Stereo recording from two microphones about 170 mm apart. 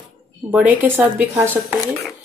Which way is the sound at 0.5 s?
10° right (ahead or behind).